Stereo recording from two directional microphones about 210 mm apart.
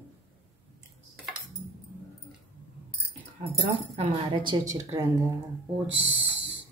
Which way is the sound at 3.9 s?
20° right (ahead or behind).